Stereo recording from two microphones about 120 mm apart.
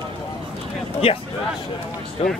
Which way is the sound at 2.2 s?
55° left (ahead or behind).